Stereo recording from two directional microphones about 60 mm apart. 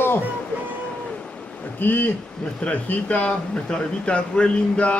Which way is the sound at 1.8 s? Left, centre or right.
Left.